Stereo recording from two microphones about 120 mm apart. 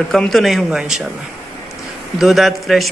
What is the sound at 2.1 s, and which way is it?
Speech, centre (ahead or behind).